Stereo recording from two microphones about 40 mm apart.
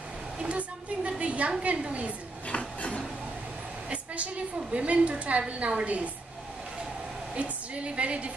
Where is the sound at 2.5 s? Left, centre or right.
Left.